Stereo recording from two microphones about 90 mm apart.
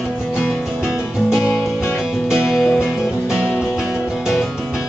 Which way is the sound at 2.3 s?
5° right (ahead or behind).